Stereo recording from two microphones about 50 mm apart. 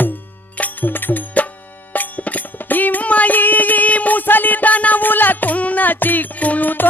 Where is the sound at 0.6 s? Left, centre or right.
Left.